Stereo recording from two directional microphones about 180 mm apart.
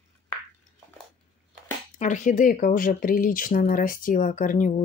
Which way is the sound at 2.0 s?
45° left (ahead or behind).